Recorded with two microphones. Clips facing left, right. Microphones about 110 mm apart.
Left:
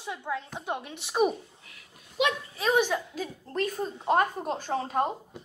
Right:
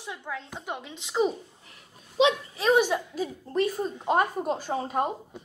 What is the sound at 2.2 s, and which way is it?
Speech, 20° right (ahead or behind).